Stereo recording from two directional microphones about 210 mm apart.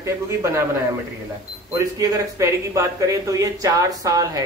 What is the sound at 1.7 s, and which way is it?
Speech, 15° right (ahead or behind).